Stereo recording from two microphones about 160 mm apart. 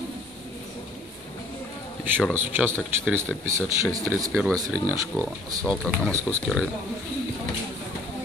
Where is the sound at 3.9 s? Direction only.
20° right (ahead or behind).